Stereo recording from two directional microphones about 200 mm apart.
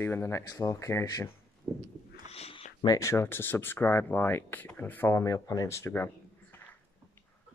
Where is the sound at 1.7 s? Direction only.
10° right (ahead or behind).